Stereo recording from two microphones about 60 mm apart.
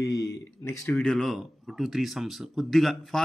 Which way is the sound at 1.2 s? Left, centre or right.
Centre.